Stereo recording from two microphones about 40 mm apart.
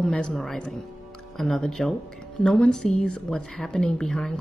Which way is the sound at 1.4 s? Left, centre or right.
Centre.